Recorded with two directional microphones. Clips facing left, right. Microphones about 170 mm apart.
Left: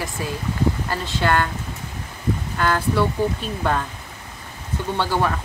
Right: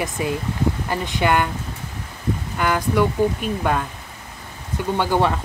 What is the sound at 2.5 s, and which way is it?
Speech, 15° right (ahead or behind).